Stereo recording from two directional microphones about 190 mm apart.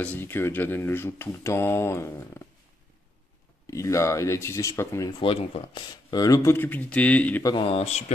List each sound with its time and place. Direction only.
0.0 s speech: 10° left (ahead or behind)
3.7 s speech: 15° left (ahead or behind)
5.2 s speech: 30° left (ahead or behind); by 7.4 s 5° left (ahead or behind)
7.4 s speech: 25° left (ahead or behind)